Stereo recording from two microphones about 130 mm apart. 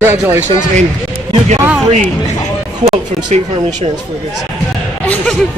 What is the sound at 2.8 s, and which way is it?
Speech, 45° right (ahead or behind).